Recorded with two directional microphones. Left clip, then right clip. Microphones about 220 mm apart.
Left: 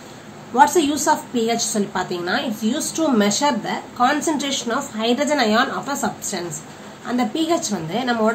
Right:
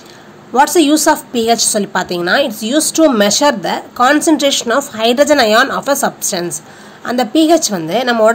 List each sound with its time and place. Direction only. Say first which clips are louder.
0.6 s a woman's voice: right 5 dB; 45° right (ahead or behind)